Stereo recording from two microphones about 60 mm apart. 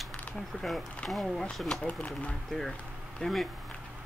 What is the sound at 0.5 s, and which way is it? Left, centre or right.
Speech, centre.